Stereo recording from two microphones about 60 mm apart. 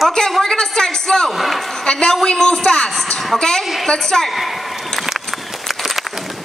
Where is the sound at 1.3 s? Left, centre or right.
Centre.